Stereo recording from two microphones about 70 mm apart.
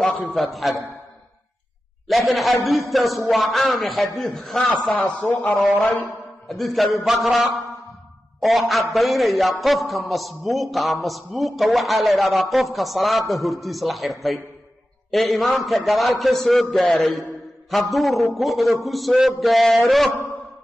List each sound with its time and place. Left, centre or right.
0.0 s a man's voice: centre
2.0 s a man's voice: centre
4.8 s speech: centre
6.5 s a man's voice: centre